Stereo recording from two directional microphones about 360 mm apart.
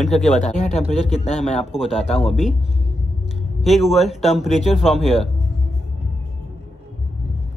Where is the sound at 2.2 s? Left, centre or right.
Centre.